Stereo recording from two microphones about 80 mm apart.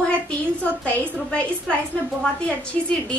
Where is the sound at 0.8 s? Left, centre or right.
Centre.